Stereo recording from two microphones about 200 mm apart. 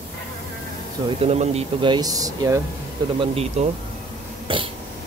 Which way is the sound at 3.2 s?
30° right (ahead or behind).